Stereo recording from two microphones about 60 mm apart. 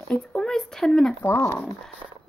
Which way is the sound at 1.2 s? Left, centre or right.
Left.